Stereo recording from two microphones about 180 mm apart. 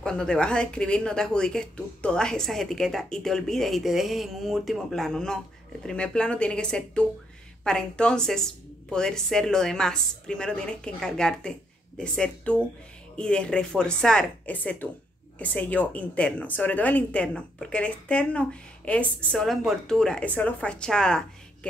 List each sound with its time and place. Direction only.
0.0 s a woman's voice: 5° left (ahead or behind)